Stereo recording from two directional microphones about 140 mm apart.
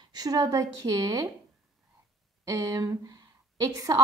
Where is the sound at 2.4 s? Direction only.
25° right (ahead or behind).